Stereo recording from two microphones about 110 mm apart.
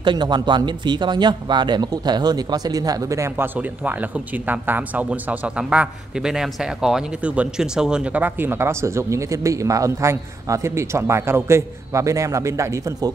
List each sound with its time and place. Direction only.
0.0 s a man's voice: 45° right (ahead or behind); by 3.4 s 25° right (ahead or behind)
3.5 s speech: 15° right (ahead or behind)